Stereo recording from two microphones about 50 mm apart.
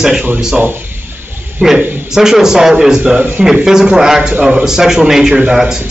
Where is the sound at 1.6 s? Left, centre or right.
Right.